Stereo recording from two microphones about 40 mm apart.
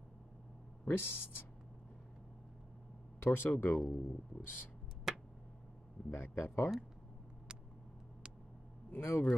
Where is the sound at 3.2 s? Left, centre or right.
Left.